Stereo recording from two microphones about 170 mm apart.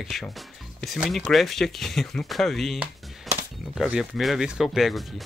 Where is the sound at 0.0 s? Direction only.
Centre (ahead or behind).